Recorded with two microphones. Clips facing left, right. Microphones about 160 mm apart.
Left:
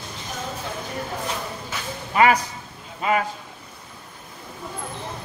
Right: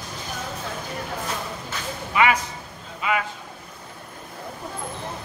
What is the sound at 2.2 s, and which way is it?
A man's voice, 40° left (ahead or behind).